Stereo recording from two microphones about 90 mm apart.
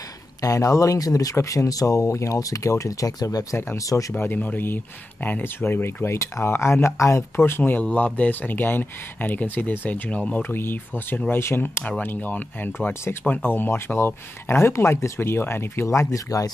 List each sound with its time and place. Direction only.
0.4 s speech: 40° left (ahead or behind)
4.1 s speech: 20° left (ahead or behind); by 16.4 s 40° left (ahead or behind)